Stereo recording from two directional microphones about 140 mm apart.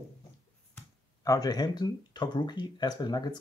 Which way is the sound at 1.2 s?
25° left (ahead or behind).